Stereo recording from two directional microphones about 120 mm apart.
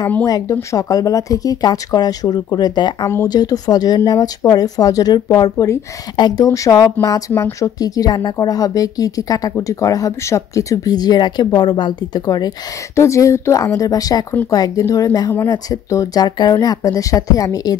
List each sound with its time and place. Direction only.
0.2 s speech: 25° left (ahead or behind)
12.9 s speech: 25° left (ahead or behind)